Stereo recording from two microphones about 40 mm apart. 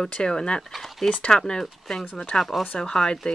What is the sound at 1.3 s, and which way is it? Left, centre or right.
Speech, centre.